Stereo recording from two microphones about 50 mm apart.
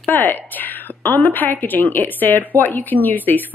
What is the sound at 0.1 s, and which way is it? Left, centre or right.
A woman's voice, left.